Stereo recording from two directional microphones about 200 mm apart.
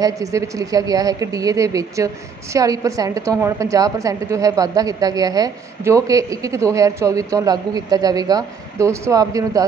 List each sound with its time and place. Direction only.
0.0 s a woman's voice: 15° right (ahead or behind)